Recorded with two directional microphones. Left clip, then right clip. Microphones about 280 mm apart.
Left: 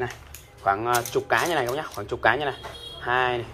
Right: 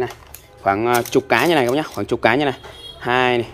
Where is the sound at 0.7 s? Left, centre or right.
Right.